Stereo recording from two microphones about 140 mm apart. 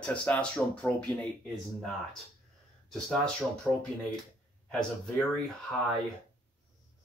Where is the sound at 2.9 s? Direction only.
5° left (ahead or behind).